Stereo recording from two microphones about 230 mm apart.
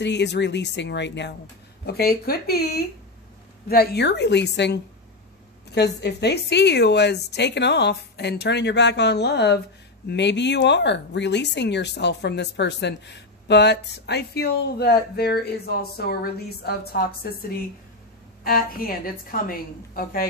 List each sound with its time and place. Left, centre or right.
0.0 s a woman's voice: left